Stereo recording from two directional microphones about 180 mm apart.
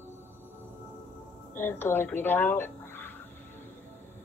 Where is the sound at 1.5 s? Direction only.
10° left (ahead or behind).